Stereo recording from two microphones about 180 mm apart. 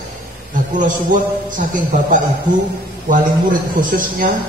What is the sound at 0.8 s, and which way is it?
A man's voice, 45° right (ahead or behind).